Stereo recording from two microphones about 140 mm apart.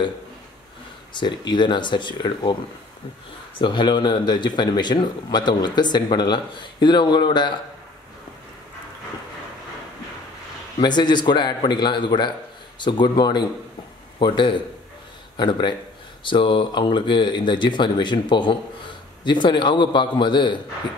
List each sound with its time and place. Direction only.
1.1 s speech: 35° left (ahead or behind)
3.5 s speech: 35° left (ahead or behind)
10.8 s speech: 30° left (ahead or behind)